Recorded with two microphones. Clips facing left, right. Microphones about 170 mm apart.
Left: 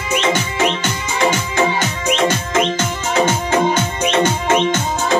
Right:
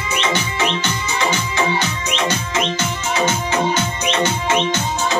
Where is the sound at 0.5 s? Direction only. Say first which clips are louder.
Left 3 dB; 45° left (ahead or behind).